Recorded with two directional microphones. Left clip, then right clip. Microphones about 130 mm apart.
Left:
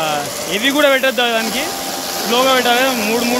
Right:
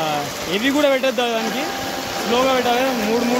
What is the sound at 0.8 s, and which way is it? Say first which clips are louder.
Speech: left 5 dB; 10° right (ahead or behind).